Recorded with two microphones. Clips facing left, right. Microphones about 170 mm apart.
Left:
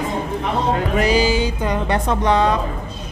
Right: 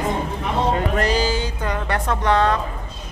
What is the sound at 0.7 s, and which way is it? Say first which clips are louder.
Speech: left 3 dB; 10° left (ahead or behind).